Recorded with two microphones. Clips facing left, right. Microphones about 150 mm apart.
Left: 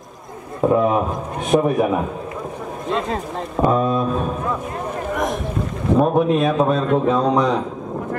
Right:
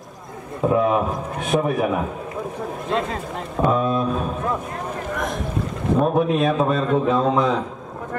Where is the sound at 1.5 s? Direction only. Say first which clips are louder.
Left 4 dB; 25° left (ahead or behind).